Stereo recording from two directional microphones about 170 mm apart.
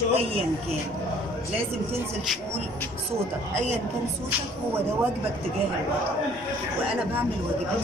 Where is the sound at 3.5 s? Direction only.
40° right (ahead or behind).